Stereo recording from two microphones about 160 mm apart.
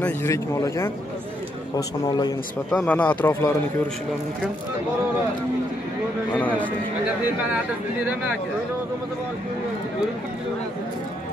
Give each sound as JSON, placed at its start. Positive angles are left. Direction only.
{"t": 0.0, "sound": "speech", "side_deg": 15}
{"t": 2.7, "sound": "speech", "side_deg": 5}
{"t": 6.3, "sound": "speech", "side_deg": 10}